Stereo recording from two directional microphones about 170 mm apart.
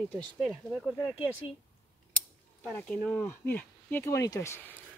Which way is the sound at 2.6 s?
5° left (ahead or behind).